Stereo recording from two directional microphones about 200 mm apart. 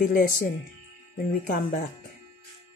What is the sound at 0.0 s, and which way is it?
Speech, 45° left (ahead or behind).